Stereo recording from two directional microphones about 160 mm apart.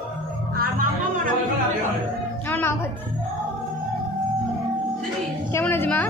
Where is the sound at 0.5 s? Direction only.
70° right (ahead or behind).